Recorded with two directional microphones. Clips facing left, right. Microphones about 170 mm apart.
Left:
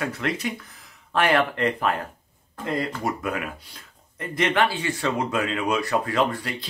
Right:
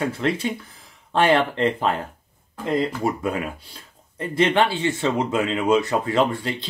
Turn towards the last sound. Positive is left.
turn(degrees=-25)  # may be behind; listen again after turning